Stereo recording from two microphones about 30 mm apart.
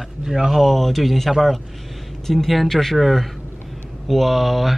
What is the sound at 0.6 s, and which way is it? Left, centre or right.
Speech, centre.